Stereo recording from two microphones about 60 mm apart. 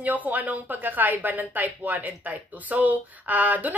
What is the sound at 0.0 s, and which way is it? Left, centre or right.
A woman's voice, right.